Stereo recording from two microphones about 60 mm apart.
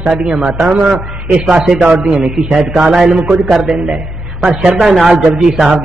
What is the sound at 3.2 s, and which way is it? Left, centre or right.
Speech, right.